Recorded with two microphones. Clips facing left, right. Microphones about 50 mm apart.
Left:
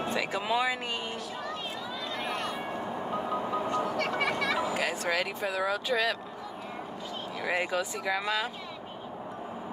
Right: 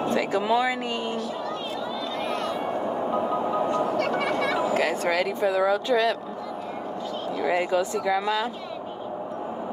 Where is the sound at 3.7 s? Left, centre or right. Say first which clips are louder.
Right 5 dB; right.